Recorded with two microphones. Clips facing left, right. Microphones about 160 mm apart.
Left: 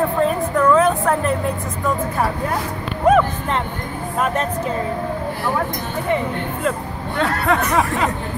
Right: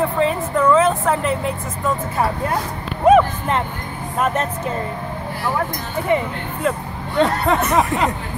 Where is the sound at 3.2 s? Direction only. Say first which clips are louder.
Right 1 dB; 5° right (ahead or behind).